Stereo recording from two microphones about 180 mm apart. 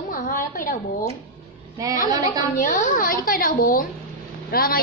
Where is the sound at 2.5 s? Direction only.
45° left (ahead or behind).